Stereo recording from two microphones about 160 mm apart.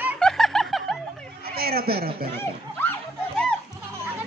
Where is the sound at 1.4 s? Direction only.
75° right (ahead or behind).